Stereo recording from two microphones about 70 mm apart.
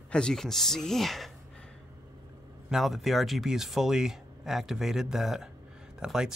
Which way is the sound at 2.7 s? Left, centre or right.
Centre.